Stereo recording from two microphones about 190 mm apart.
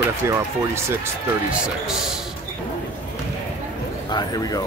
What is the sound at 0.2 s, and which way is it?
Speech, 15° right (ahead or behind).